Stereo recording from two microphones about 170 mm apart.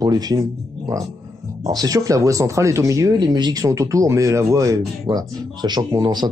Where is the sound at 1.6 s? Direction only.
20° right (ahead or behind).